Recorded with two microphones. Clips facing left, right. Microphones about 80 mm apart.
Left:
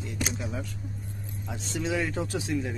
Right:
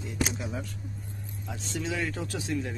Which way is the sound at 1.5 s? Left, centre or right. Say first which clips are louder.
Left 3 dB; centre.